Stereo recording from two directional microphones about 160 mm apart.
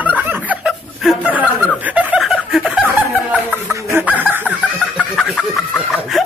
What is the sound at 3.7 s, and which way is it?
Chicken, 15° right (ahead or behind).